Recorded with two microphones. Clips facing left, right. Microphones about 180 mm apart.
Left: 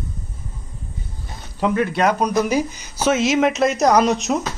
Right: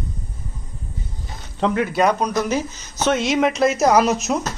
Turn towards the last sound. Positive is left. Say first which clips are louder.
# even
turn(degrees=0)  # may be behind; listen again after turning